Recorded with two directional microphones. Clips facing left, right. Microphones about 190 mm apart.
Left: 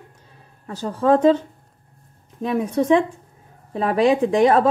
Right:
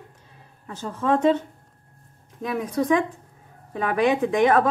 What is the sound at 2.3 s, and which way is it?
Speech, 30° left (ahead or behind).